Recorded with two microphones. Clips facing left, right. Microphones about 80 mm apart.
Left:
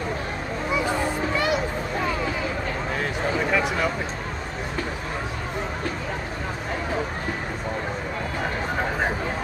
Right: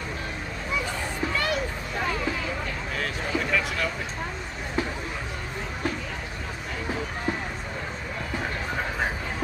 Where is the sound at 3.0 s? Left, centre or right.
Centre.